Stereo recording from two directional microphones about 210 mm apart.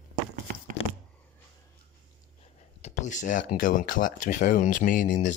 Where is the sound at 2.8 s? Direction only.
35° left (ahead or behind).